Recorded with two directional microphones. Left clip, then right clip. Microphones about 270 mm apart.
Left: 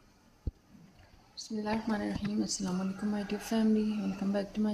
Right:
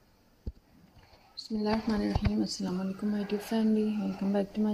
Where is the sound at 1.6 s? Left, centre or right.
Centre.